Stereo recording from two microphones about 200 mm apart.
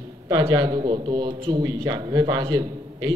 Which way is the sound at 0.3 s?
20° right (ahead or behind).